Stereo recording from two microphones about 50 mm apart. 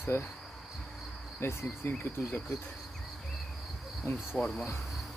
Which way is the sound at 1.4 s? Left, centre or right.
Left.